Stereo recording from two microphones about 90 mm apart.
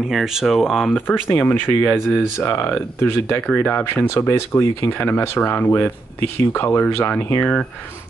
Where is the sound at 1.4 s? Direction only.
20° left (ahead or behind).